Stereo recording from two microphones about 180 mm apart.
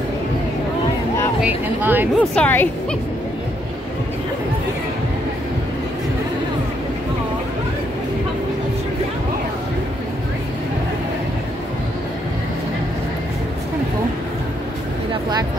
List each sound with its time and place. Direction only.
1.4 s speech: 10° right (ahead or behind)
2.1 s a woman's voice: 10° left (ahead or behind)